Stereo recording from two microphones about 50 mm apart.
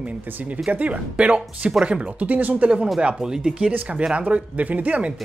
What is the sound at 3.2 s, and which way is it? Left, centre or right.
Speech, centre.